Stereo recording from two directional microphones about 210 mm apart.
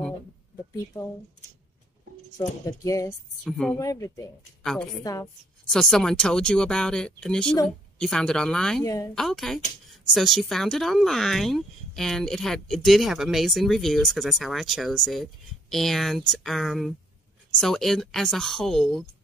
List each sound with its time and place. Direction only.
2.6 s speech: 15° left (ahead or behind)
3.4 s speech: 5° left (ahead or behind)
3.7 s speech: 15° left (ahead or behind)
4.6 s speech: centre (ahead or behind)
5.0 s speech: 15° left (ahead or behind)
5.7 s speech: centre (ahead or behind)
8.8 s speech: 15° left (ahead or behind)
9.1 s speech: centre (ahead or behind)